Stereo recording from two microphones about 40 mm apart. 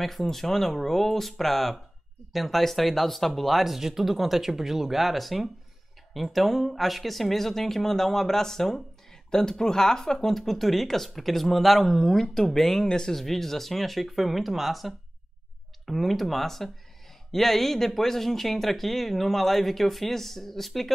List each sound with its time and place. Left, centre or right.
0.0 s speech: centre
12.8 s speech: centre
13.2 s speech: centre